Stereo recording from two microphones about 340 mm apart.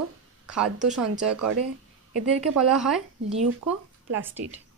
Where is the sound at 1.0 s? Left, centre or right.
Right.